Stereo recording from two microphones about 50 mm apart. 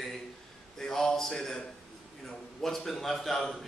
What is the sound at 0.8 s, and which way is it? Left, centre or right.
A man's voice, centre.